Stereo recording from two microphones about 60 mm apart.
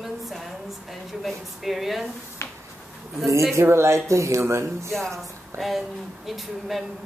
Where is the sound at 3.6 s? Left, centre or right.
Right.